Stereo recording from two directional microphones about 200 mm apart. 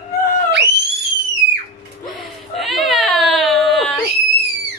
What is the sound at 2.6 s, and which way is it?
Baby cry, centre (ahead or behind).